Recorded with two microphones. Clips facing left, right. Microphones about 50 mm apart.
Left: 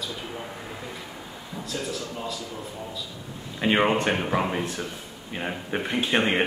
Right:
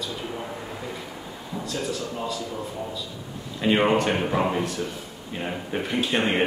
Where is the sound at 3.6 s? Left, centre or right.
Centre.